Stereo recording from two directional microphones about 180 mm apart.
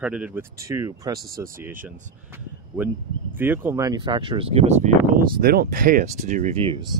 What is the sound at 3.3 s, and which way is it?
Speech, 15° right (ahead or behind).